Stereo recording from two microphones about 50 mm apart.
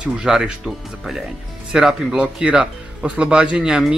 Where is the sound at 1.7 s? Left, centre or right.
Centre.